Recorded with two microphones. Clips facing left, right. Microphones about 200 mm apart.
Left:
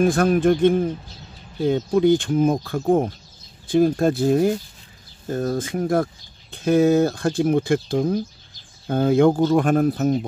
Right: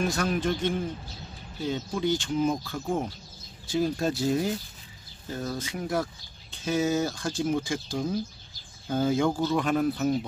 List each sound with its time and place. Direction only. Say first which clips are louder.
0.0 s speech: left 10 dB; 50° left (ahead or behind)